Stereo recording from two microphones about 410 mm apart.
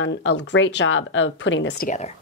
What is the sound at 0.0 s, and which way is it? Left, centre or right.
Speech, left.